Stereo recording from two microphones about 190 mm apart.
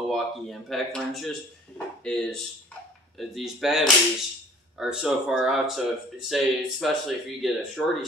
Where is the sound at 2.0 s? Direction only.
Centre (ahead or behind).